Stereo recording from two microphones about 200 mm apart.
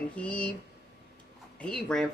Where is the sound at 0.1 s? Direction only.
5° left (ahead or behind).